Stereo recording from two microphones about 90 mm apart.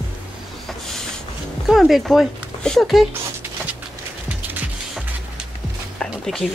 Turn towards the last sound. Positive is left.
turn(degrees=5)  # may be behind; listen again after turning